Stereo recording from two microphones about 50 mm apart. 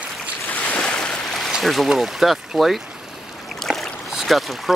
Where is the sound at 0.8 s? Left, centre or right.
Centre.